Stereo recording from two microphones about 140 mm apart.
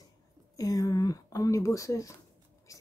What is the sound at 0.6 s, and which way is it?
Speech, 25° left (ahead or behind).